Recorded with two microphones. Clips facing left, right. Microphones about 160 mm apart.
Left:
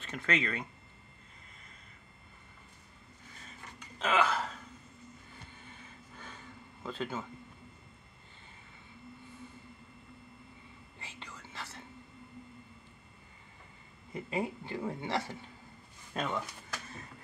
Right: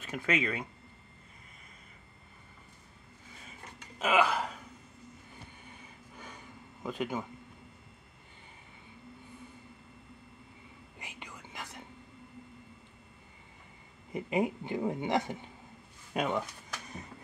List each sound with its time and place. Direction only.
0.0 s speech: 10° right (ahead or behind)
4.0 s hiccup: 10° right (ahead or behind)
6.1 s a sound: 15° right (ahead or behind)
11.0 s whispering: 15° right (ahead or behind)
14.1 s speech: 20° right (ahead or behind)
16.8 s music: 20° right (ahead or behind)